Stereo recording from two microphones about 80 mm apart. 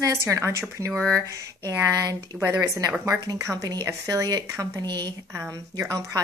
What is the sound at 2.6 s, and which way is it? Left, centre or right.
Speech, right.